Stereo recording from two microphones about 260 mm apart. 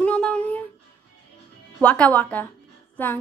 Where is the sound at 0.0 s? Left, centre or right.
Centre.